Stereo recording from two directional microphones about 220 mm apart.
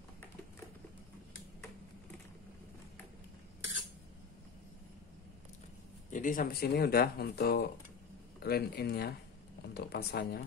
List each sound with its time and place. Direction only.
6.0 s speech: 35° left (ahead or behind)